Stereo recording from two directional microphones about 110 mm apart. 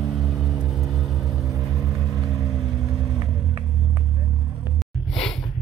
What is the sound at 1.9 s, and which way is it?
Vehicle, 30° right (ahead or behind).